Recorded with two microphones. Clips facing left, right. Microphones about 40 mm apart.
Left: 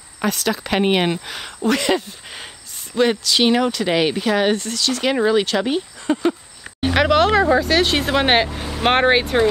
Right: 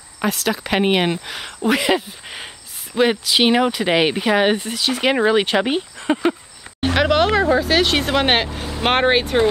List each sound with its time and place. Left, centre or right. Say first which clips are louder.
0.2 s speech: even; centre; by 6.3 s right
6.9 s speech: left 1 dB; centre